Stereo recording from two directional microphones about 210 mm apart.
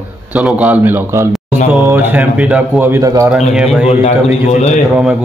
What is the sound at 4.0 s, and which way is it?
Speech, 30° left (ahead or behind).